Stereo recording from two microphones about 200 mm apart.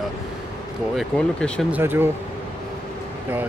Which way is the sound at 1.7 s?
10° right (ahead or behind).